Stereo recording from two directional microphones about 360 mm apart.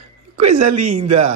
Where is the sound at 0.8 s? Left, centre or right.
Centre.